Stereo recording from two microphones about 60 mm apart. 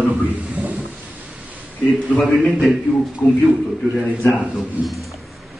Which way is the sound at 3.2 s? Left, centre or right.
Centre.